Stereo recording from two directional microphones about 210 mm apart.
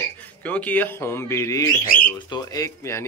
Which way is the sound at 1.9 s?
40° left (ahead or behind).